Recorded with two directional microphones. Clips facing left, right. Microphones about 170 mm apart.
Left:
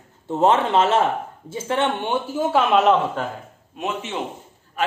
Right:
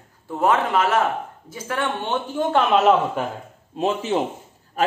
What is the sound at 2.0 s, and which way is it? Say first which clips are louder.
Speech: left 1 dB; 10° left (ahead or behind).